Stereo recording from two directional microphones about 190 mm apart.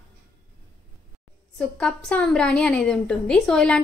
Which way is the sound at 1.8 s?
5° left (ahead or behind).